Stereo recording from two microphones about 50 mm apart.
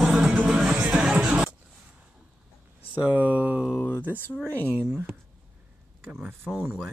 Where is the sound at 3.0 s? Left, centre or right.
Right.